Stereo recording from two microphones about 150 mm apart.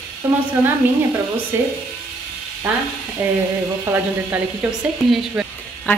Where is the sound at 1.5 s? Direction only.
15° right (ahead or behind).